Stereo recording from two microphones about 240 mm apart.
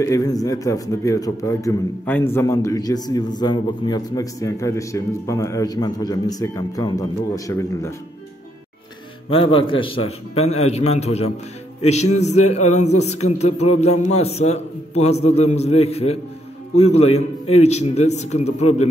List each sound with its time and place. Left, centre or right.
0.0 s a man's voice: centre
9.3 s a man's voice: left